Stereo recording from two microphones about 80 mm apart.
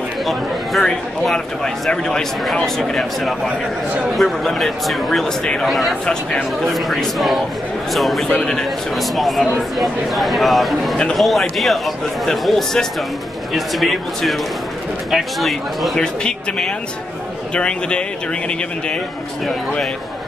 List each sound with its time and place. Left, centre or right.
0.3 s speech: centre
6.0 s speech: centre
6.7 s speech: centre